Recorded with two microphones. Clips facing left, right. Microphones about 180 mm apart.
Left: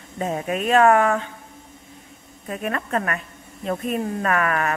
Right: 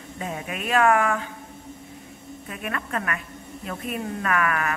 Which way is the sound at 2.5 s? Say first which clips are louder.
Left 6 dB; 35° left (ahead or behind).